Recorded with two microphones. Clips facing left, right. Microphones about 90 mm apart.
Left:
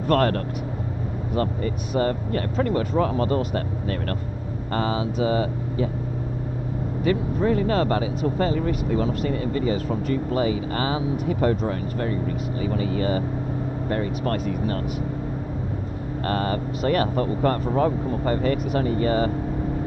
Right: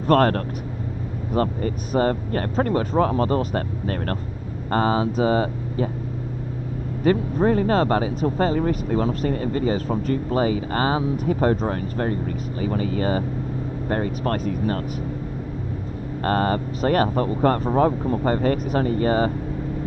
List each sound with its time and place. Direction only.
0.0 s speech: 35° right (ahead or behind)
7.1 s speech: 40° right (ahead or behind)
16.3 s speech: 35° right (ahead or behind)